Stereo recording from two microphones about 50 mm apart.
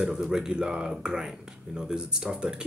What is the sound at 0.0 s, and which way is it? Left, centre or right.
Speech, centre.